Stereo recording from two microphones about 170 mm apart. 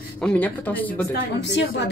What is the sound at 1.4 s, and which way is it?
Speech, 90° left.